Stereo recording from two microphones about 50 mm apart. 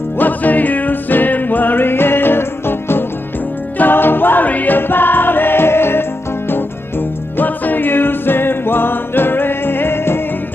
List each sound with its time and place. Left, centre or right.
0.2 s music: left